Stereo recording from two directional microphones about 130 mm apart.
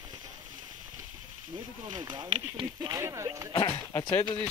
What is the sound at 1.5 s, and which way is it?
Speech, 35° right (ahead or behind).